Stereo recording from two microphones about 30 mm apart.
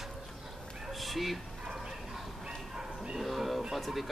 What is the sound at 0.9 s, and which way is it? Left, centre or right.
Bow-wow, centre.